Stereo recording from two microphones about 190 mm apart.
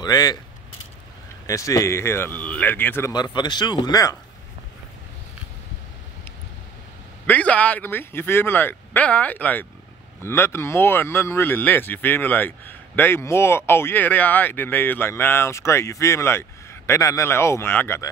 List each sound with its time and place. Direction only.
0.0 s speech: 20° left (ahead or behind)
1.5 s speech: 15° left (ahead or behind)
7.2 s speech: 5° left (ahead or behind)